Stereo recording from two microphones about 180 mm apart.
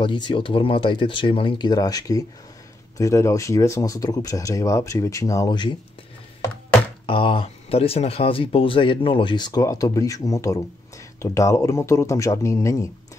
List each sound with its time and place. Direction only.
0.0 s speech: 25° left (ahead or behind)
7.1 s speech: 30° left (ahead or behind)